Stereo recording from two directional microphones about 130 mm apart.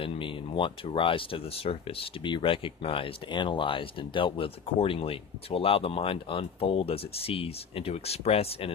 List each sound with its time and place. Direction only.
0.0 s speech: 40° left (ahead or behind)